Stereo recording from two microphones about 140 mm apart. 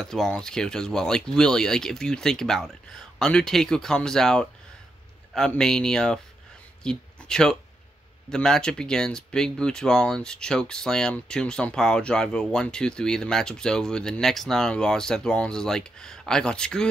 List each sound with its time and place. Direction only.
0.0 s speech: 5° left (ahead or behind)
6.8 s a sound: 5° left (ahead or behind)
8.3 s speech: 5° left (ahead or behind)